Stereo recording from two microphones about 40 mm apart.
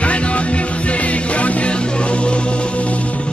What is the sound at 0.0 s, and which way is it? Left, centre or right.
Music, left.